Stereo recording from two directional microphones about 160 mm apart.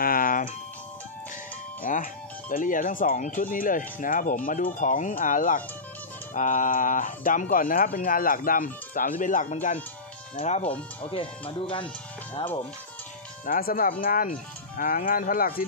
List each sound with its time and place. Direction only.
0.0 s music: 60° left (ahead or behind)
1.8 s music: 60° left (ahead or behind)
2.5 s speech: 60° left (ahead or behind)
11.0 s speech: 35° left (ahead or behind)
13.5 s speech: 65° left (ahead or behind)